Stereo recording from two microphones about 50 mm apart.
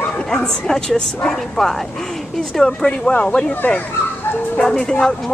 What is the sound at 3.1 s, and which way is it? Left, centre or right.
Chicken, left.